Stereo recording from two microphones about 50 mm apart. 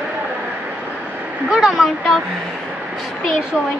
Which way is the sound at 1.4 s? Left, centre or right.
Centre.